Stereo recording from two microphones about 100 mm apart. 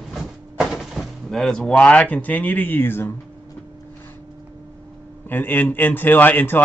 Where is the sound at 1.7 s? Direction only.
15° left (ahead or behind).